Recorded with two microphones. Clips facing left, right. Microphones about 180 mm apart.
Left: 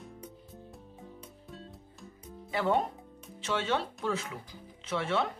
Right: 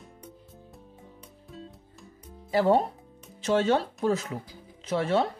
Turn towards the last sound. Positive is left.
turn(degrees=-35)  # may be behind; listen again after turning